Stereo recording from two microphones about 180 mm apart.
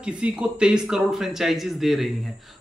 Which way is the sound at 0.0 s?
5° right (ahead or behind).